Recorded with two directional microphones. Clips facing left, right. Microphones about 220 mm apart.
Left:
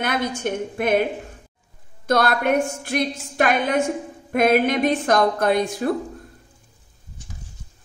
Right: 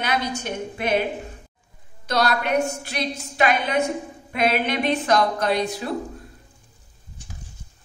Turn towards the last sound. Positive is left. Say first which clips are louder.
# left 3 dB
turn(degrees=50)  # may be behind; listen again after turning